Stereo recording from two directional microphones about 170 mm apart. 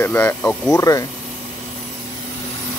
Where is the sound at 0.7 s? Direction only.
20° left (ahead or behind).